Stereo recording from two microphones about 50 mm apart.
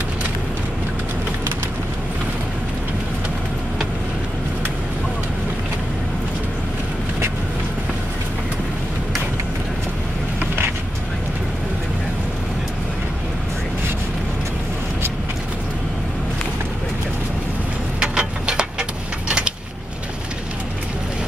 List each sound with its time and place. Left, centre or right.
18.0 s vehicle: centre